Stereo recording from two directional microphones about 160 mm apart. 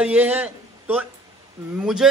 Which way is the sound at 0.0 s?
10° right (ahead or behind).